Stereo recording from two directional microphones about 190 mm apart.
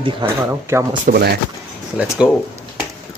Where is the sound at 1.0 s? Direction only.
55° right (ahead or behind).